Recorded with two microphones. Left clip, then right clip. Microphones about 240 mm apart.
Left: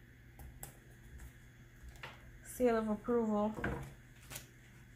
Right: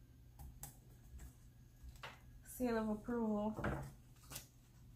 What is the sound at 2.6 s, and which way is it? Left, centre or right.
Speech, left.